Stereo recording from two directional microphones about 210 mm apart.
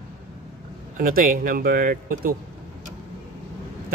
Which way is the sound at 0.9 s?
45° right (ahead or behind).